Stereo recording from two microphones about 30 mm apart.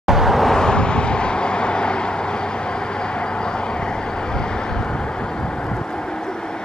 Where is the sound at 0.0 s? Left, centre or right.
Centre.